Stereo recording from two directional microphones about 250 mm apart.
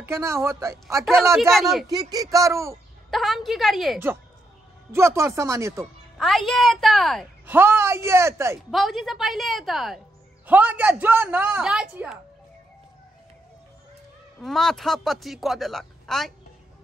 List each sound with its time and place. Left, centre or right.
0.0 s a woman's voice: centre
1.5 s a woman's voice: centre
1.9 s a woman's voice: centre
3.1 s a woman's voice: centre
6.1 s a woman's voice: centre
8.6 s a woman's voice: centre
14.4 s a woman's voice: centre